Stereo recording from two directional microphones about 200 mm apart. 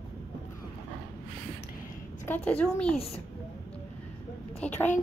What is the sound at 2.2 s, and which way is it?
Speech, 10° left (ahead or behind).